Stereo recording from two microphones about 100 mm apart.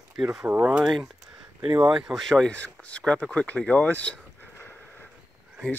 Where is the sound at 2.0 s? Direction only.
Centre (ahead or behind).